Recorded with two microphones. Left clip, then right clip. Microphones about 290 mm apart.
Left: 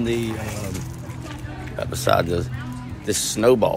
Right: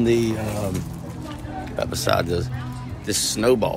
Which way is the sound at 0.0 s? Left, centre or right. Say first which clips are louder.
Right 4 dB; centre.